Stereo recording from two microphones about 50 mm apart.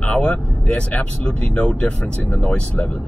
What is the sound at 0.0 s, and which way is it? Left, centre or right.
Speech, left.